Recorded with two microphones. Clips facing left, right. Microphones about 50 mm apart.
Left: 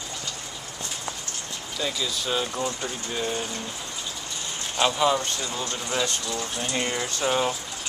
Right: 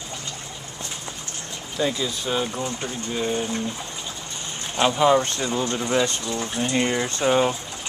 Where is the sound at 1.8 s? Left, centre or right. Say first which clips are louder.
Right 2 dB; right.